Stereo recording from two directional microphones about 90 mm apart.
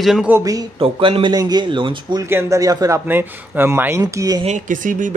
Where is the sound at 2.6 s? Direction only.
40° right (ahead or behind).